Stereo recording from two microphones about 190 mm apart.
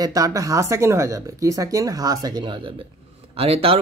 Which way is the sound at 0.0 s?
20° right (ahead or behind).